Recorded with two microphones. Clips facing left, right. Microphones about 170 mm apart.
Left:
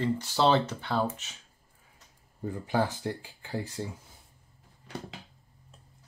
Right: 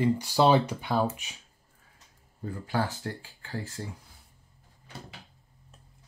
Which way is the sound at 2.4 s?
20° left (ahead or behind).